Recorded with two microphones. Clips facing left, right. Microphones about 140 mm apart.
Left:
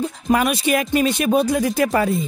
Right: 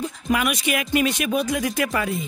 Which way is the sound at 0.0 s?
35° left (ahead or behind).